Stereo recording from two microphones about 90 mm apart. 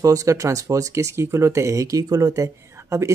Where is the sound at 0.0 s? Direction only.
40° right (ahead or behind).